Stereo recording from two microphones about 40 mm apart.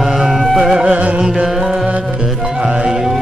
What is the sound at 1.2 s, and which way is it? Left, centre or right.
Speech, centre.